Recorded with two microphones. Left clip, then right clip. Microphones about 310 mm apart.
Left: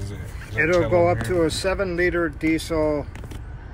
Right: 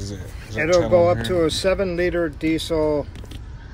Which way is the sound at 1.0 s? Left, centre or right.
Right.